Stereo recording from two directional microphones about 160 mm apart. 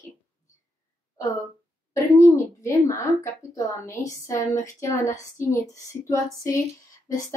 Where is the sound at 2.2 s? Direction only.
15° left (ahead or behind).